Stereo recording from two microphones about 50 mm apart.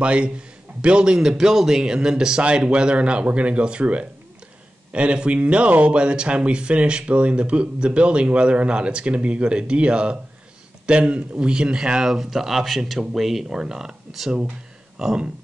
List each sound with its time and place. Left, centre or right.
0.0 s speech: right
15.0 s speech: centre